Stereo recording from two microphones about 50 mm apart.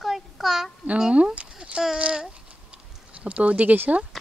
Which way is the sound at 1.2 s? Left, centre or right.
Centre.